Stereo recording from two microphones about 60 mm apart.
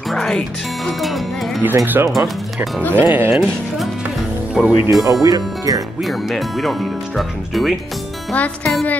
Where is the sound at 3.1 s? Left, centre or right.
Right.